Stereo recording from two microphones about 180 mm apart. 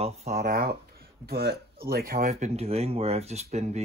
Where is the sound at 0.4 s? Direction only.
55° right (ahead or behind).